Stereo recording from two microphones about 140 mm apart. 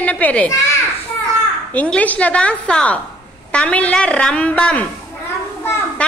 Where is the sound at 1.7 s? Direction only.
10° left (ahead or behind).